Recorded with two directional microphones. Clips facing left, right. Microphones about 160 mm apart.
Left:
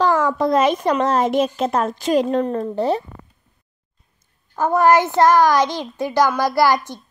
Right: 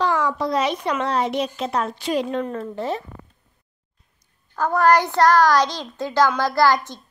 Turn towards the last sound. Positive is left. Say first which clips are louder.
# left 2 dB
turn(degrees=15)  # may be behind; listen again after turning